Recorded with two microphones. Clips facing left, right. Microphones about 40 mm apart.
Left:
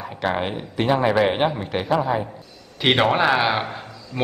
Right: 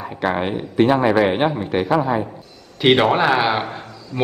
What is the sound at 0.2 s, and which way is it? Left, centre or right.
A man's voice, centre.